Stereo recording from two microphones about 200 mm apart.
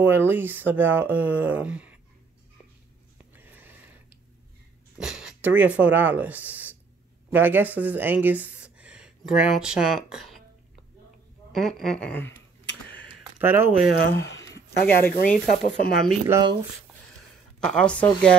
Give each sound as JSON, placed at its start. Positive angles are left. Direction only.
{"t": 0.0, "sound": "speech", "side_deg": -10}
{"t": 3.3, "sound": "a sound", "side_deg": -10}
{"t": 4.9, "sound": "speech", "side_deg": -5}
{"t": 11.5, "sound": "speech", "side_deg": 0}
{"t": 13.4, "sound": "speech", "side_deg": -10}
{"t": 14.0, "sound": "speech", "side_deg": 60}
{"t": 14.4, "sound": "a sound", "side_deg": 15}
{"t": 15.1, "sound": "speech", "side_deg": 40}
{"t": 16.3, "sound": "speech", "side_deg": -20}
{"t": 17.6, "sound": "speech", "side_deg": 5}